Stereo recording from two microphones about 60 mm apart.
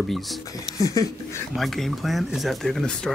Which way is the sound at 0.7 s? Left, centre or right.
Left.